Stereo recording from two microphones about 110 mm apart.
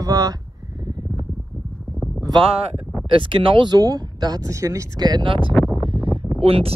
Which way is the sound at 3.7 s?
35° right (ahead or behind).